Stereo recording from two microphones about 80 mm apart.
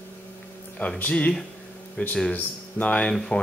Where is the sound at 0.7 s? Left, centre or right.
Centre.